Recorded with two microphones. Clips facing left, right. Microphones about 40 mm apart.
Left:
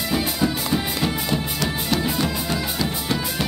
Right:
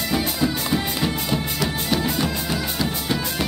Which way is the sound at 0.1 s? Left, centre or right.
Centre.